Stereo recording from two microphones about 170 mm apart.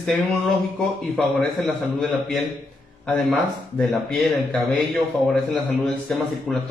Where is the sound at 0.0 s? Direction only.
Centre (ahead or behind).